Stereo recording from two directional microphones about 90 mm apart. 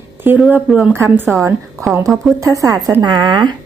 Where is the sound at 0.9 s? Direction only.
25° right (ahead or behind).